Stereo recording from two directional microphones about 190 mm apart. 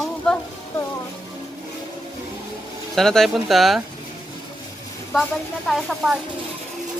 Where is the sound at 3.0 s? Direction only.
Centre (ahead or behind).